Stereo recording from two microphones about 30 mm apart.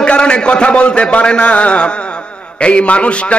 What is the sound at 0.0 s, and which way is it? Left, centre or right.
A man's voice, left.